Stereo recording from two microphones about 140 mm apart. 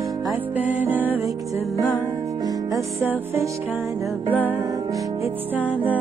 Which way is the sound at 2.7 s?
20° right (ahead or behind).